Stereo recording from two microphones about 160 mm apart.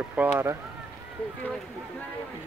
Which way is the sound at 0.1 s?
15° right (ahead or behind).